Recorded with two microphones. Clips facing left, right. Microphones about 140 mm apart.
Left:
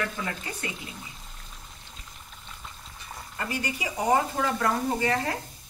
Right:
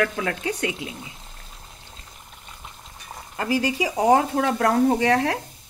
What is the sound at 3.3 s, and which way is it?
Speech, 90° right.